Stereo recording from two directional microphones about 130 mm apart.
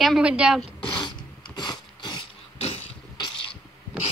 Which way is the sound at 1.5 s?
35° left (ahead or behind).